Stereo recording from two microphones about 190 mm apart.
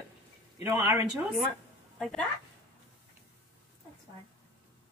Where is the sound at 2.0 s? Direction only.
5° left (ahead or behind).